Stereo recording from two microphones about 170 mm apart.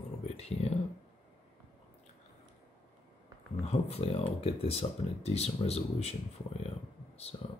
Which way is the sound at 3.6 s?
35° left (ahead or behind).